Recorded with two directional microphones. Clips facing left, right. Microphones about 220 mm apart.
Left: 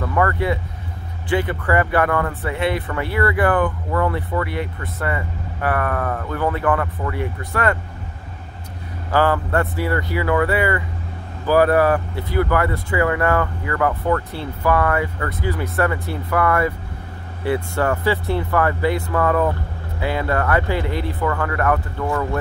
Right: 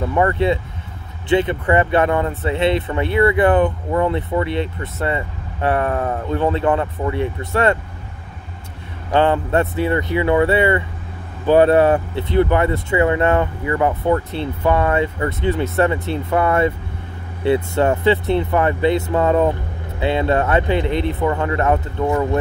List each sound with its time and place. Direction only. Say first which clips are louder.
0.0 s speech: right 3 dB; 20° right (ahead or behind)
9.1 s speech: right 3 dB; 25° right (ahead or behind)